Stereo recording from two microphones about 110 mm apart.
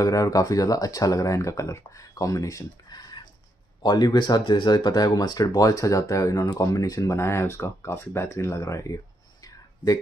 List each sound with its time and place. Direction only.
0.0 s speech: 30° left (ahead or behind)